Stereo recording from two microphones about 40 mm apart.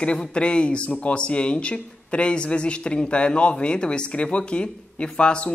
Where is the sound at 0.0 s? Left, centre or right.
Left.